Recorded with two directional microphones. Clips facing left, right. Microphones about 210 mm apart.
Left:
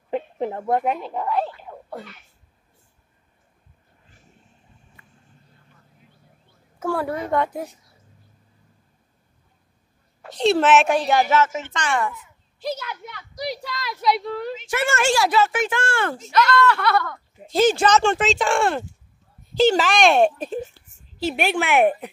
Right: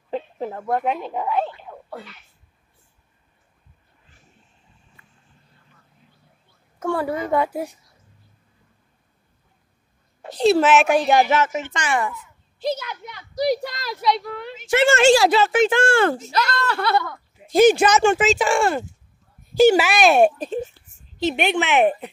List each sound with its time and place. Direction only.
0.1 s a sound: 20° left (ahead or behind)
0.9 s speech: 5° right (ahead or behind)
1.6 s a sound: 10° left (ahead or behind)
6.8 s speech: centre (ahead or behind)
10.3 s a woman's voice: centre (ahead or behind)
12.7 s speech: 5° left (ahead or behind)
13.4 s speech: 45° right (ahead or behind)
14.2 s a woman's voice: 35° left (ahead or behind)
14.7 s speech: 25° right (ahead or behind)
17.0 s a woman's voice: 15° right (ahead or behind)
21.2 s a woman's voice: 5° left (ahead or behind)